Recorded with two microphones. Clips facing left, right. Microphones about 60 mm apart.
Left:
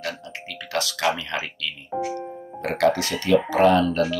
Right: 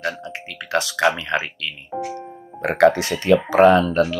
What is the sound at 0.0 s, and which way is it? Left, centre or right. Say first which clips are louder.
Speech: right 5 dB; right.